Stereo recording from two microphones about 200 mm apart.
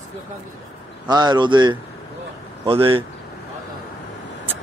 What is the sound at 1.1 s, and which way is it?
A man's voice, 20° right (ahead or behind).